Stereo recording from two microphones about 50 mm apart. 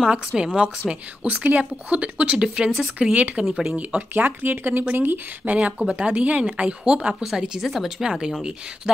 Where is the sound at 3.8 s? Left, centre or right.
Right.